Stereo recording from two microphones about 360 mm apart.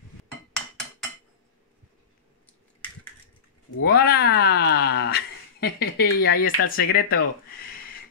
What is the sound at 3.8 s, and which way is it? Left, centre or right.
Cat, left.